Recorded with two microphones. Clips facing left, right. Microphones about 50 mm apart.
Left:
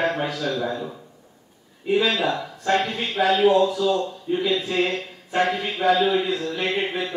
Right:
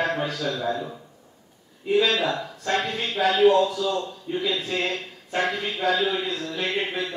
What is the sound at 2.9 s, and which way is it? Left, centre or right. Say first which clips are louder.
Speech: left 2 dB; centre.